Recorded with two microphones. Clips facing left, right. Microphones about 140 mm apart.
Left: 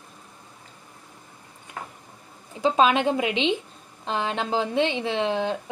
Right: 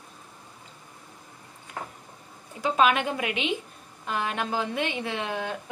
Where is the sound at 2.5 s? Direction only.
25° left (ahead or behind).